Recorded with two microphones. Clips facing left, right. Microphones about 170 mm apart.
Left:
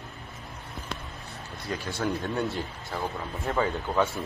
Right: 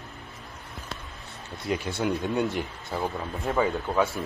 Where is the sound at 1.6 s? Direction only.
25° right (ahead or behind).